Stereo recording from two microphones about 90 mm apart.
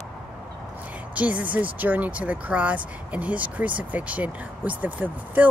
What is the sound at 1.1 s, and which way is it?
Speech, 15° right (ahead or behind).